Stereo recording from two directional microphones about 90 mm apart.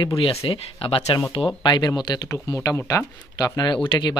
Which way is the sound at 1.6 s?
55° left (ahead or behind).